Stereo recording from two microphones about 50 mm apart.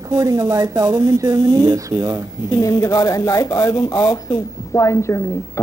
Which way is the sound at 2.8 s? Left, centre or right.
Left.